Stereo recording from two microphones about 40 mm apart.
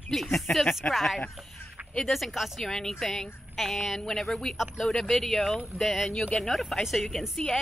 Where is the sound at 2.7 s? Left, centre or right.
Centre.